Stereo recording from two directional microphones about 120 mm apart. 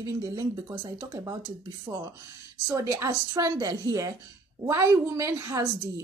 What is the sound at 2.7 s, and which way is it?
A woman's voice, 25° right (ahead or behind).